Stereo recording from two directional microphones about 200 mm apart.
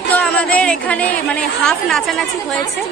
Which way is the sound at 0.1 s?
5° left (ahead or behind).